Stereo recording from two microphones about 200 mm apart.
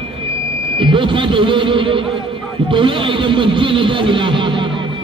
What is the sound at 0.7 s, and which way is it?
Speech, 25° right (ahead or behind).